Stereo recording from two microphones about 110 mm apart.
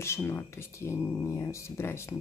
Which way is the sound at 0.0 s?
25° left (ahead or behind).